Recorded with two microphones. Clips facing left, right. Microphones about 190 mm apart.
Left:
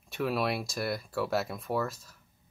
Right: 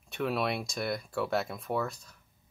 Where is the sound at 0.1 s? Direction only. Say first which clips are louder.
Left 1 dB; centre (ahead or behind).